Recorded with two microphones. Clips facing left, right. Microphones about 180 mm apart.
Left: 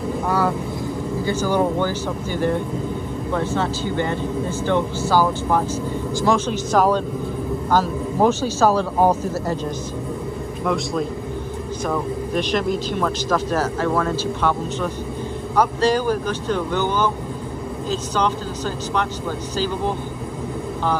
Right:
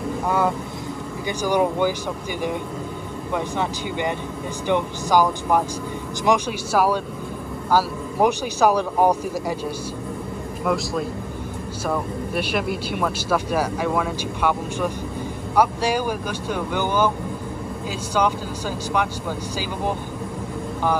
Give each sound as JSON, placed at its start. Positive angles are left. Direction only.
{"t": 1.2, "sound": "speech", "side_deg": -15}
{"t": 10.6, "sound": "a man's voice", "side_deg": 0}